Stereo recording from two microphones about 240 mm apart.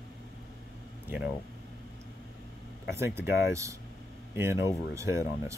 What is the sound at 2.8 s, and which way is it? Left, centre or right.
Speech, centre.